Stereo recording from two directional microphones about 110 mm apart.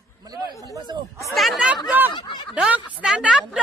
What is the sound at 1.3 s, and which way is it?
Chatter, centre (ahead or behind).